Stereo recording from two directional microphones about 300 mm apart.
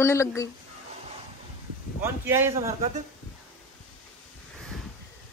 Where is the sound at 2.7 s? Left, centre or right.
Centre.